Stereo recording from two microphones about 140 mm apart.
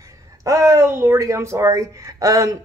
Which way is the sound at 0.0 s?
20° right (ahead or behind).